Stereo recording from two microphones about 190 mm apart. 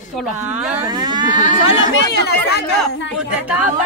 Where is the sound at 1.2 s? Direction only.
40° left (ahead or behind).